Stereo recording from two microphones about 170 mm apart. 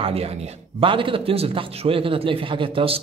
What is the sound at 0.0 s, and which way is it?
A man's voice, 35° right (ahead or behind).